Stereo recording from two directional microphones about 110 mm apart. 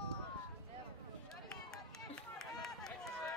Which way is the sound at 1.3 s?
5° left (ahead or behind).